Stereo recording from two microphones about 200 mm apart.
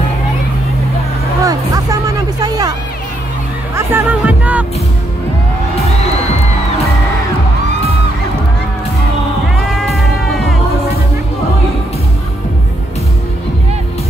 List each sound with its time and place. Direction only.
1.4 s music: 15° right (ahead or behind)
3.7 s music: 10° right (ahead or behind)
9.6 s music: centre (ahead or behind)